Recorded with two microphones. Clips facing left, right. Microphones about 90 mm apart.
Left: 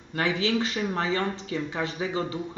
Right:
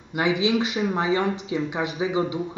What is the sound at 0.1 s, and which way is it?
Speech, 15° right (ahead or behind).